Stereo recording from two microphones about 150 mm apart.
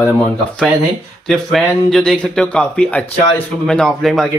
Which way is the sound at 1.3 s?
5° left (ahead or behind).